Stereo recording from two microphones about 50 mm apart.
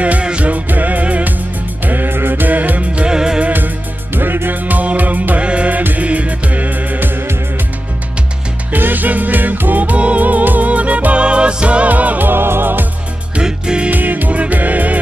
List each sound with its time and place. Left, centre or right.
0.0 s music: right
1.9 s music: right
3.1 s music: centre
3.4 s music: right
8.7 s music: right
12.3 s music: right
13.4 s music: centre
13.8 s music: right